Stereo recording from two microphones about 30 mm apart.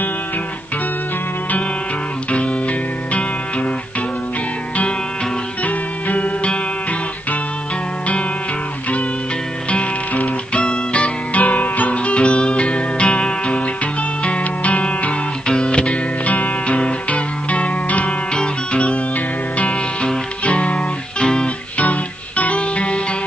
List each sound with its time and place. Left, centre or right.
3.1 s music: left
5.6 s music: left
10.5 s music: left
11.3 s music: left
11.9 s music: left
15.4 s music: left
18.3 s music: left
20.4 s music: left
21.2 s music: left
22.6 s music: left